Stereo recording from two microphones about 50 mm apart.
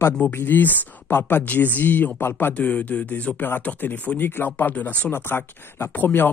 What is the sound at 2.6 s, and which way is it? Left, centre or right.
Speech, left.